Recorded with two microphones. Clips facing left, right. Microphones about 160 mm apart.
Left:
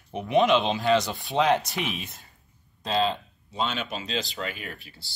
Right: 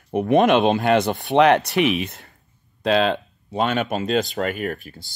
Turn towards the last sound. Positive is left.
turn(degrees=-45)  # may be behind; listen again after turning